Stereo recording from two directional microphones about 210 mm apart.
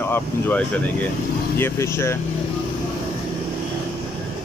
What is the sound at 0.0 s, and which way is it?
Speech, 10° left (ahead or behind).